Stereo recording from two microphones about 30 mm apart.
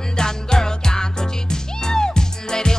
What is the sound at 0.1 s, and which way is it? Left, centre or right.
Music, left.